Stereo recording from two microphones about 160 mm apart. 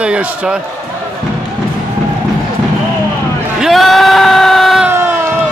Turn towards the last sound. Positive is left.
turn(degrees=-15)  # may be behind; listen again after turning